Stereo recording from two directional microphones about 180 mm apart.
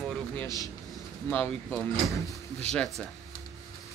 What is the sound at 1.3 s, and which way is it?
Speech, 10° left (ahead or behind).